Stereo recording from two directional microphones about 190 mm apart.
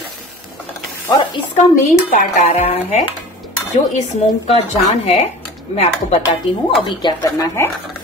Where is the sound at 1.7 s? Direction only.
40° left (ahead or behind).